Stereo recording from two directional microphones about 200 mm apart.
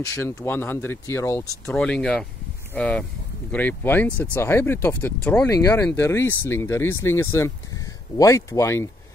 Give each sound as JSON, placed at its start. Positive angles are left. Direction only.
{"t": 0.0, "sound": "speech", "side_deg": 15}
{"t": 1.7, "sound": "speech", "side_deg": 5}